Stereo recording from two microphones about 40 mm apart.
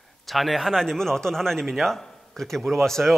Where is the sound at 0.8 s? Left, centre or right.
Centre.